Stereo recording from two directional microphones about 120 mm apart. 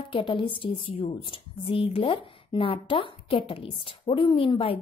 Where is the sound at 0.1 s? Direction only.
45° left (ahead or behind).